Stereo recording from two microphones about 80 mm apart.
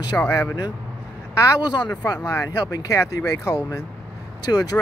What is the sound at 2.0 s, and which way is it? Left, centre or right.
Speech, left.